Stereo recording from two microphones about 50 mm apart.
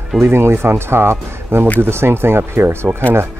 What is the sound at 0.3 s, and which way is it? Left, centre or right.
Speech, right.